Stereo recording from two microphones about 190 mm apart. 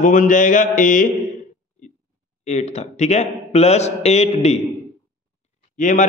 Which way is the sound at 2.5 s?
35° left (ahead or behind).